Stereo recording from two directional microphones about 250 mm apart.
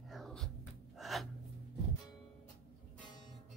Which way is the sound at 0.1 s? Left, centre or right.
Centre.